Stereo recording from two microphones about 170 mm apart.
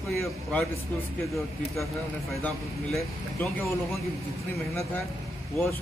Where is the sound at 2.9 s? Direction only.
5° left (ahead or behind).